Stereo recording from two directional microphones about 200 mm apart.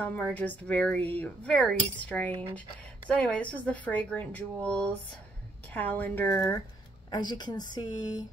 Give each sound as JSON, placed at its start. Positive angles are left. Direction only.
{"t": 0.0, "sound": "speech", "side_deg": 10}